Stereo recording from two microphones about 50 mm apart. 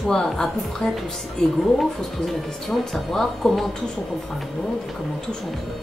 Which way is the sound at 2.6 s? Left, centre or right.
Centre.